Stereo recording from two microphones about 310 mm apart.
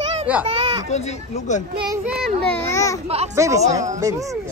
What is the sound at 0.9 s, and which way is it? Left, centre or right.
Speech, left.